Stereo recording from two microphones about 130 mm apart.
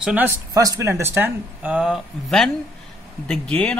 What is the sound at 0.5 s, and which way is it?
Speech, 25° right (ahead or behind).